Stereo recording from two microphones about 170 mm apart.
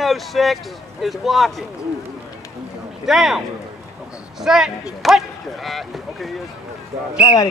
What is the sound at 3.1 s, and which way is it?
Speech, centre (ahead or behind).